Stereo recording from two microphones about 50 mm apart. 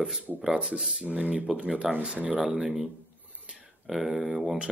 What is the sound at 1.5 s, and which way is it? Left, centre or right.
Speech, centre.